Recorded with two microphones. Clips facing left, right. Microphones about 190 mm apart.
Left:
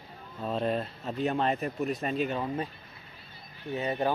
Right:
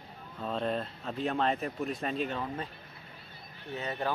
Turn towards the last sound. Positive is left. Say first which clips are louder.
# left 5 dB
turn(degrees=15)  # may be behind; listen again after turning